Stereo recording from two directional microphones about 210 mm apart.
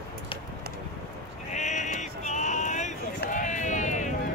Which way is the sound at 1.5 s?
35° left (ahead or behind).